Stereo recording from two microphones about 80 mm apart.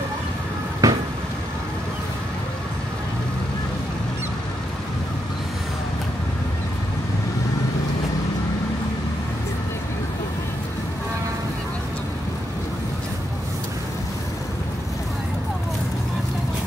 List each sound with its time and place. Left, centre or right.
0.8 s vehicle: right